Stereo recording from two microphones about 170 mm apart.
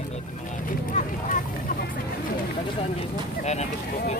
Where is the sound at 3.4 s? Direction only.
40° left (ahead or behind).